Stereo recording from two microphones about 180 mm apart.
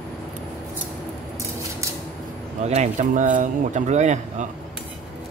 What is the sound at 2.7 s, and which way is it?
Speech, 40° right (ahead or behind).